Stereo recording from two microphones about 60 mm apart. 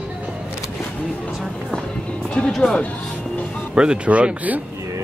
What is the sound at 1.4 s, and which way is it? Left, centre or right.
Speech, centre.